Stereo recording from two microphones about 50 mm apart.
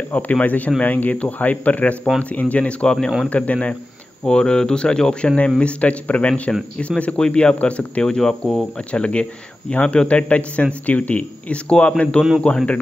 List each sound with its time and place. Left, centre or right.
0.1 s a man's voice: left
4.2 s a man's voice: centre
8.1 s speech: centre
8.9 s a man's voice: left